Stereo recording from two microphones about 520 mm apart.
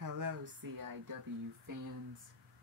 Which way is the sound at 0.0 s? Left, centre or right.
Right.